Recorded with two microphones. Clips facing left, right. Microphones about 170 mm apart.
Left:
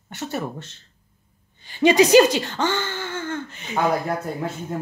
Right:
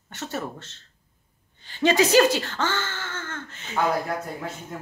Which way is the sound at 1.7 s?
15° left (ahead or behind).